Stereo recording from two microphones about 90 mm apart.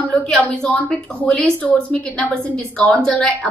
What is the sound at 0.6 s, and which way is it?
A woman's voice, 15° left (ahead or behind).